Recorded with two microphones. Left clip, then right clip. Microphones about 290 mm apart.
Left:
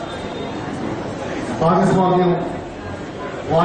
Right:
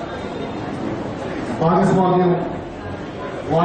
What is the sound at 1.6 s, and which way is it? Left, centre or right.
Speech, centre.